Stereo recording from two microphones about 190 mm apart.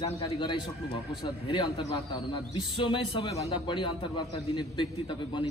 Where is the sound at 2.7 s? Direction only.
25° left (ahead or behind).